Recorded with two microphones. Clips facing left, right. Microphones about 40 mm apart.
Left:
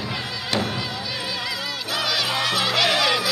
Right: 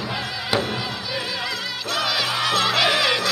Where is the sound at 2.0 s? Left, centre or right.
Centre.